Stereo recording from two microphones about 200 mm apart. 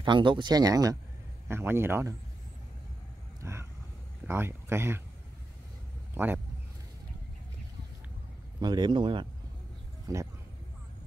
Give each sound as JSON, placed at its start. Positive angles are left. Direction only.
{"t": 0.0, "sound": "speech", "side_deg": -25}
{"t": 3.4, "sound": "a sound", "side_deg": -15}
{"t": 4.3, "sound": "speech", "side_deg": -10}
{"t": 6.1, "sound": "speech", "side_deg": -10}
{"t": 8.5, "sound": "speech", "side_deg": -20}